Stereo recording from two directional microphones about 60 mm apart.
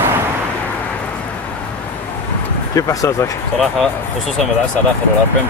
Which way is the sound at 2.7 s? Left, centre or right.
Left.